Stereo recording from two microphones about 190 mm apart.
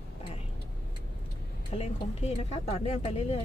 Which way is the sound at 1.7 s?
35° left (ahead or behind).